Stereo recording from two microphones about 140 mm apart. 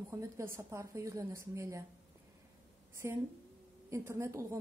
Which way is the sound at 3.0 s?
20° right (ahead or behind).